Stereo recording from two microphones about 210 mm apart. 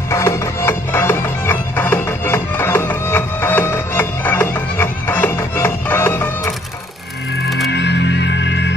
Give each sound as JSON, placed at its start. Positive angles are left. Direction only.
{"t": 0.1, "sound": "music", "side_deg": 15}
{"t": 7.7, "sound": "music", "side_deg": 55}